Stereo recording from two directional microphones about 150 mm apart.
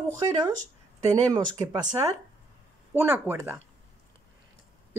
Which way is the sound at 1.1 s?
25° right (ahead or behind).